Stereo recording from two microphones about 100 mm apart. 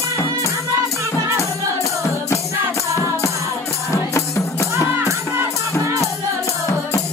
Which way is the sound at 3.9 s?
30° left (ahead or behind).